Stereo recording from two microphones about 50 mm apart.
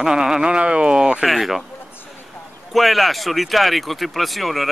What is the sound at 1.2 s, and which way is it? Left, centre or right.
Speech, centre.